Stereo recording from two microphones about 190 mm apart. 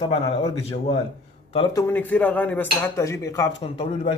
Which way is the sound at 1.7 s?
10° left (ahead or behind).